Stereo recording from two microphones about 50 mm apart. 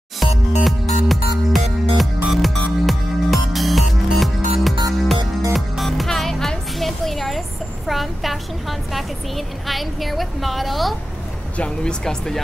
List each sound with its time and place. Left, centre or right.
0.2 s music: centre
9.7 s a sound: centre
11.5 s speech: left
12.0 s speech: centre